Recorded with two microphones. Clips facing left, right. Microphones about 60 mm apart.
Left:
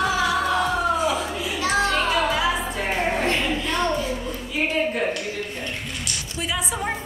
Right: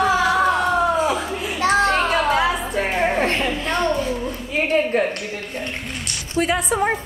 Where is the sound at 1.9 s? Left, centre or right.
Right.